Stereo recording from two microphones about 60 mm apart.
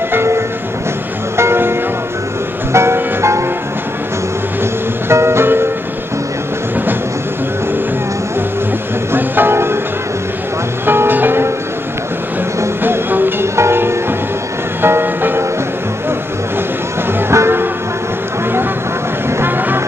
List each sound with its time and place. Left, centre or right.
0.1 s train: right
1.3 s music: right
5.0 s music: right
9.1 s music: right
10.9 s music: right
12.8 s music: right
17.3 s music: right
19.4 s vehicle: right